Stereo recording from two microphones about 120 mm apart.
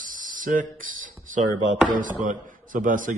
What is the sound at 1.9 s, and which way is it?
A man's voice, 90° right.